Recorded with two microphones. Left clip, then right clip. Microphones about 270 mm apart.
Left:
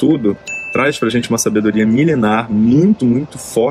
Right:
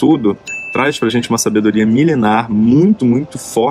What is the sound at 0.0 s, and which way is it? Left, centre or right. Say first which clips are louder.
Speech: right 2 dB; centre.